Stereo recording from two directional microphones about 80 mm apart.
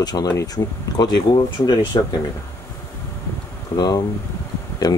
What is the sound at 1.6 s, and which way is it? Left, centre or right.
Speech, left.